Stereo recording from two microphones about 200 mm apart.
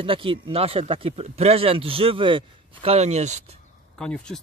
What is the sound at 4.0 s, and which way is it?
Speech, 5° left (ahead or behind).